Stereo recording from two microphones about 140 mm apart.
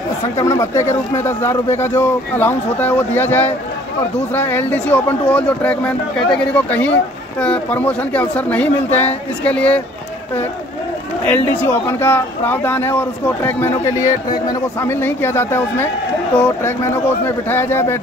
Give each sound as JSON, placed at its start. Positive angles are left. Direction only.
{"t": 0.4, "sound": "speech", "side_deg": 20}
{"t": 11.2, "sound": "speech", "side_deg": 15}